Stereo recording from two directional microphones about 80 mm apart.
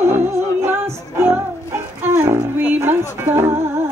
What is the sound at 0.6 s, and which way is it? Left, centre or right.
Music, right.